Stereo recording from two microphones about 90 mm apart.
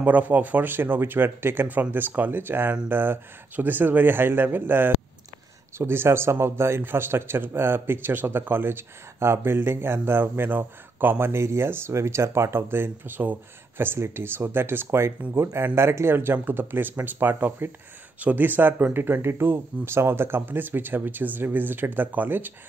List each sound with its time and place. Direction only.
0.0 s a man's voice: 20° right (ahead or behind)